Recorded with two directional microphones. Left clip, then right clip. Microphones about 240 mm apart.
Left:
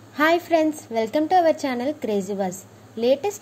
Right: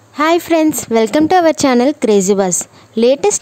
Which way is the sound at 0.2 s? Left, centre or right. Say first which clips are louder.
Right 7 dB; right.